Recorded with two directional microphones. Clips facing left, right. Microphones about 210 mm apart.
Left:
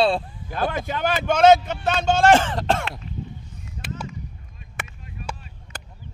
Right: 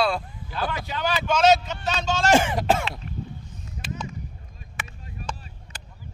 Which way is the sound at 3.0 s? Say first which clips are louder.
Left 1 dB; 55° right (ahead or behind).